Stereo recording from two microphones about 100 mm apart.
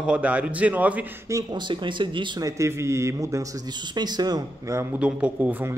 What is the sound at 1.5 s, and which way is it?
Speech, 50° right (ahead or behind).